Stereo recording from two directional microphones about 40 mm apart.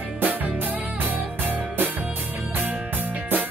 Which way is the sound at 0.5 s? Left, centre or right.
Right.